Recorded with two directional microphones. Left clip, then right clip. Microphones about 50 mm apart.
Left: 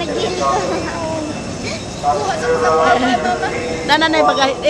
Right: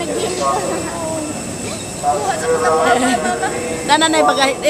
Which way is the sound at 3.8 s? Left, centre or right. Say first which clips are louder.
Even; right.